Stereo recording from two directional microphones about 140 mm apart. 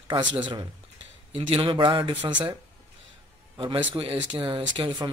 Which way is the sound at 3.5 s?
35° right (ahead or behind).